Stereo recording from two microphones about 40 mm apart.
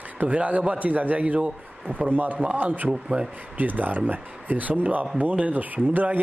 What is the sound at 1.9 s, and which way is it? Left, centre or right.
A man's voice, right.